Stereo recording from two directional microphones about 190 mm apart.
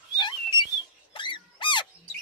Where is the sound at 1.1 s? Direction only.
25° left (ahead or behind).